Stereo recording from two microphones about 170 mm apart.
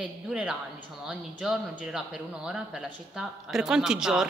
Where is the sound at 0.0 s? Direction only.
5° right (ahead or behind).